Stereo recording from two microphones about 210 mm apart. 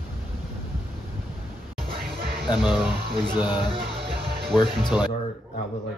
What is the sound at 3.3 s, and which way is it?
Speech, 20° left (ahead or behind).